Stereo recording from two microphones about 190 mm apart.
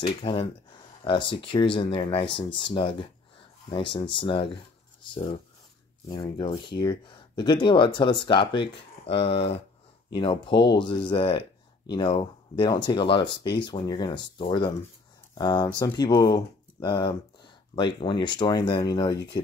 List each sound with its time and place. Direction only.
0.2 s speech: 25° left (ahead or behind)